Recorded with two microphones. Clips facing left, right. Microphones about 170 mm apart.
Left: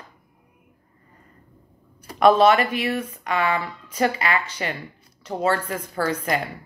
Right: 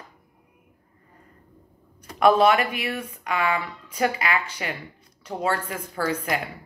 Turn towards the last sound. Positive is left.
turn(degrees=-10)  # may be behind; listen again after turning